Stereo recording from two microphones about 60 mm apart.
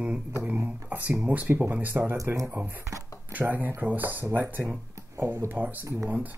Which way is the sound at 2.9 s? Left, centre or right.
Right.